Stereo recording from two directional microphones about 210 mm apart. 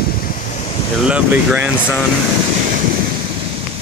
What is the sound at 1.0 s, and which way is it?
Speech, 5° right (ahead or behind).